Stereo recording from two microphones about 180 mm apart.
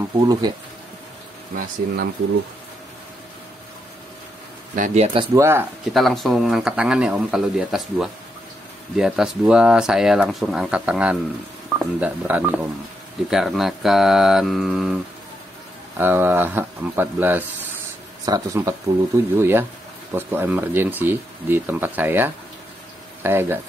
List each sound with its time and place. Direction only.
0.2 s speech: 20° right (ahead or behind)
1.5 s speech: 50° right (ahead or behind)
4.7 s speech: 40° right (ahead or behind)
5.3 s speech: 15° right (ahead or behind)
5.9 s speech: centre (ahead or behind)
16.0 s speech: 10° right (ahead or behind)